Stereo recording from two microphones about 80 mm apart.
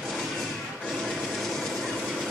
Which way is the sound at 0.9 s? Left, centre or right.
Centre.